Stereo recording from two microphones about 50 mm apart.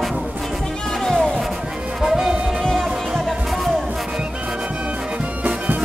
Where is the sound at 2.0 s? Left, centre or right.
Centre.